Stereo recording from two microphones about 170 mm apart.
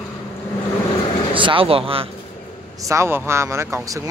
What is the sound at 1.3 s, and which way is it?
Speech, 30° right (ahead or behind).